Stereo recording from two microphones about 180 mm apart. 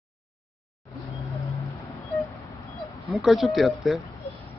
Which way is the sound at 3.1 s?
Centre (ahead or behind).